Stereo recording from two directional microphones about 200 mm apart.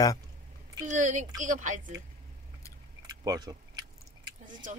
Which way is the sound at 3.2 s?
20° right (ahead or behind).